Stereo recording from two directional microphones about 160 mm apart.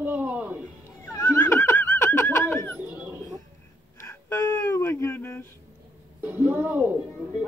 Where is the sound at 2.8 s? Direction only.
10° right (ahead or behind).